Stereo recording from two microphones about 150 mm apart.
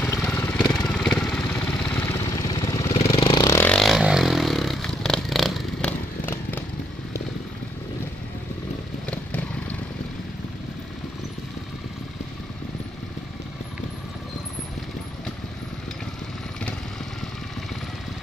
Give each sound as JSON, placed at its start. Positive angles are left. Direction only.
{"t": 0.3, "sound": "vehicle", "side_deg": 15}
{"t": 2.9, "sound": "vehicle", "side_deg": 40}
{"t": 3.4, "sound": "vehicle", "side_deg": 15}
{"t": 3.7, "sound": "vehicle", "side_deg": 0}
{"t": 9.0, "sound": "vehicle", "side_deg": 10}